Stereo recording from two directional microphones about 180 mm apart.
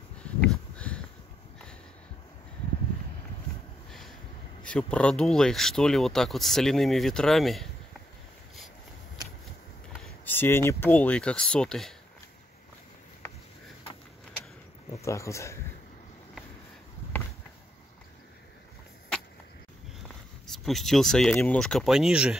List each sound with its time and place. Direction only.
0.2 s a sound: 5° left (ahead or behind)
4.6 s speech: 5° left (ahead or behind)
10.0 s speech: 10° left (ahead or behind)
14.9 s speech: 15° left (ahead or behind)
20.5 s speech: centre (ahead or behind)